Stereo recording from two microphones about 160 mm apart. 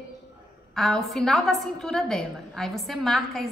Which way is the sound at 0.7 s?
5° left (ahead or behind).